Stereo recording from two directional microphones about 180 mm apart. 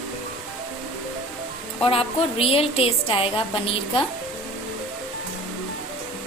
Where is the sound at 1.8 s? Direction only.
30° left (ahead or behind).